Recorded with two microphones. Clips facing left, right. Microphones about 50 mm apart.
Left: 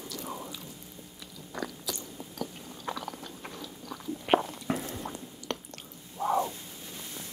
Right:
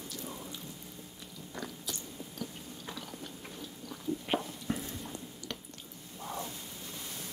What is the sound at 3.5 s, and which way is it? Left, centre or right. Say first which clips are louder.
Biting: left 3 dB; left.